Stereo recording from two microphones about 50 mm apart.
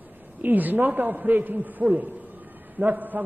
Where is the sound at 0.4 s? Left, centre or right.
Right.